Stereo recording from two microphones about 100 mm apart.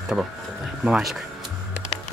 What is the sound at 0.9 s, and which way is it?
Speech, 5° right (ahead or behind).